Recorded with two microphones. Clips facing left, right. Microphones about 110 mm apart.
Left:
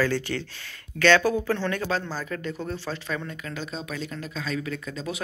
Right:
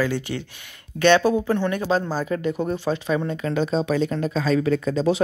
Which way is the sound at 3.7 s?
35° right (ahead or behind).